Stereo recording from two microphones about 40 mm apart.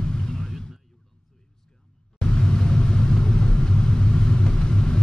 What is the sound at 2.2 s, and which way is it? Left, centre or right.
Vehicle, centre.